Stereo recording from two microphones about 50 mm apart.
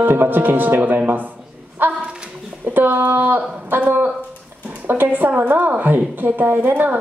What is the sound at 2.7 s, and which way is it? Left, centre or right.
Speech, right.